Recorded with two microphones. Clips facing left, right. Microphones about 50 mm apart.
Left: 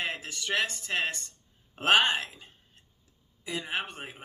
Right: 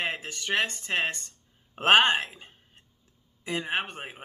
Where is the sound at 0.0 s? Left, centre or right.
Right.